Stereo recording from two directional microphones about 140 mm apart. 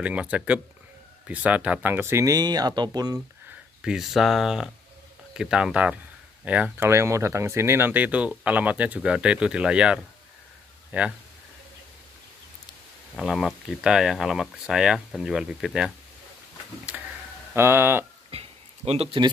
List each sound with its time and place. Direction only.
0.0 s speech: 10° right (ahead or behind); by 3.2 s 30° right (ahead or behind)
3.8 s speech: 5° right (ahead or behind)
13.1 s speech: 5° right (ahead or behind)
16.9 s a sound: 10° right (ahead or behind)
17.6 s speech: 15° right (ahead or behind)
18.3 s a sound: 45° right (ahead or behind)